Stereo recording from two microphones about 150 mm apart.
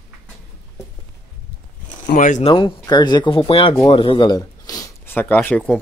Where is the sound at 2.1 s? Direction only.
60° left (ahead or behind).